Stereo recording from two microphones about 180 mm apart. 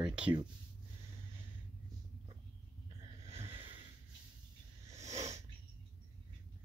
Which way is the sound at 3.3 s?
30° right (ahead or behind).